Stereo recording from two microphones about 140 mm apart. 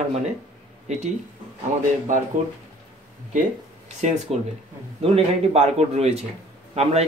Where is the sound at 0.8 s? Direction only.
55° right (ahead or behind).